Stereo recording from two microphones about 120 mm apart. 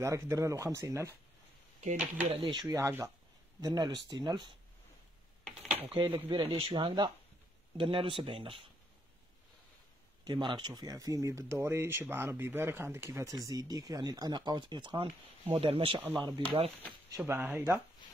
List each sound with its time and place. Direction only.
0.0 s speech: 25° right (ahead or behind)
2.2 s speech: 50° right (ahead or behind)
2.6 s speech: 20° right (ahead or behind)
3.6 s speech: 35° right (ahead or behind)
5.9 s speech: 40° right (ahead or behind)
10.2 s speech: 40° right (ahead or behind)
16.2 s speech: 40° right (ahead or behind)
17.3 s speech: 15° right (ahead or behind)